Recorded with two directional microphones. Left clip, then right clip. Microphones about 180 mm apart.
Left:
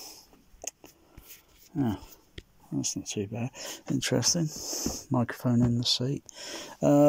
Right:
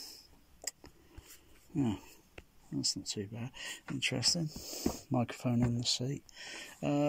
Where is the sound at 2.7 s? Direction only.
10° left (ahead or behind); by 4.2 s 30° left (ahead or behind).